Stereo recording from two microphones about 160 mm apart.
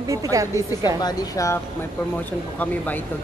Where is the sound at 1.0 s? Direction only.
20° left (ahead or behind).